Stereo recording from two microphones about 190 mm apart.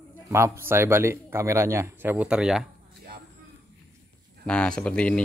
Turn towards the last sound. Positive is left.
turn(degrees=5)  # may be behind; listen again after turning